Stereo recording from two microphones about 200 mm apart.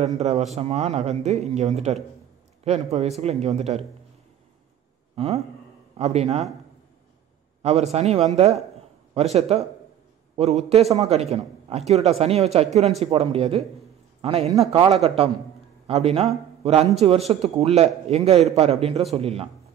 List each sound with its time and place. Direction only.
0.0 s a man's voice: 35° right (ahead or behind)
5.1 s a man's voice: 30° right (ahead or behind)
7.6 s a man's voice: 35° right (ahead or behind)